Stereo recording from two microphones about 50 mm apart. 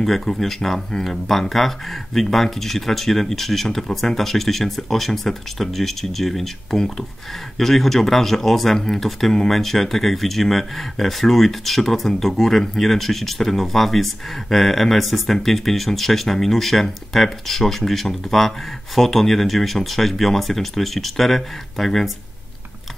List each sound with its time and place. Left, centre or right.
0.0 s speech: centre